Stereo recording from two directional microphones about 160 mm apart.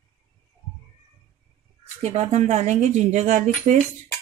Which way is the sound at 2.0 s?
45° right (ahead or behind).